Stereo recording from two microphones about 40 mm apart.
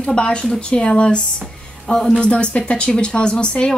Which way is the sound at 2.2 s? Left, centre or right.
Left.